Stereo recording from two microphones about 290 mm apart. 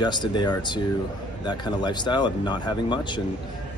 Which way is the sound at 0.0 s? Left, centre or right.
Centre.